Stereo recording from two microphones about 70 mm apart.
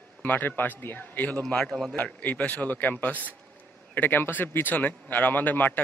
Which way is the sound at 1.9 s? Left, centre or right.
Left.